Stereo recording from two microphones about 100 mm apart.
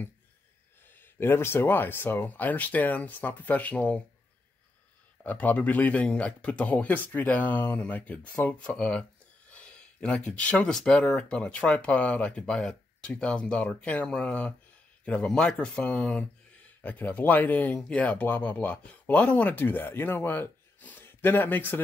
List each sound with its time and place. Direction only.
0.9 s speech: 20° left (ahead or behind)
5.2 s speech: 15° left (ahead or behind)